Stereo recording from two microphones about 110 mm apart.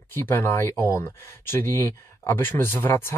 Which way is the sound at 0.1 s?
20° left (ahead or behind).